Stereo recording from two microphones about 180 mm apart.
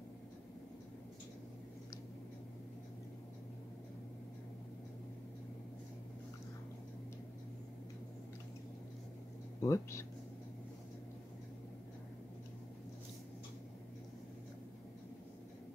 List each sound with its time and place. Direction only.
9.6 s speech: 15° left (ahead or behind)